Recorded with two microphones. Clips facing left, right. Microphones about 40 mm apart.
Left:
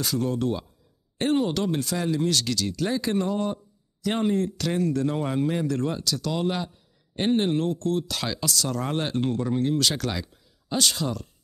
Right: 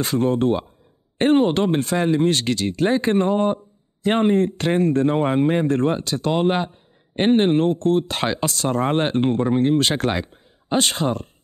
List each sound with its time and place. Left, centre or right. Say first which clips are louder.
0.0 s speech: right 7 dB; right